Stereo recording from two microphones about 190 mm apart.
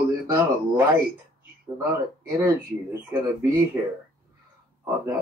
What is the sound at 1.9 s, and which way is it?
Speech, 15° right (ahead or behind).